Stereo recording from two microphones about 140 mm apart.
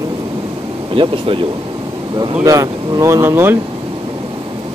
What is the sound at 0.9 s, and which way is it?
Speech, 40° right (ahead or behind).